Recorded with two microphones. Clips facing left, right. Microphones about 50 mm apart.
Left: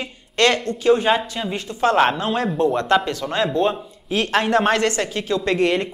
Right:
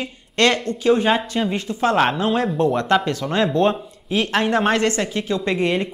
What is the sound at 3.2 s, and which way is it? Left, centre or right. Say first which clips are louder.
Speech: right 2 dB; centre.